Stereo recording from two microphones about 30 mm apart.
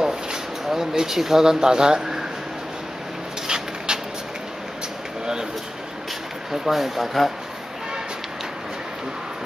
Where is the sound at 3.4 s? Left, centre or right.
Right.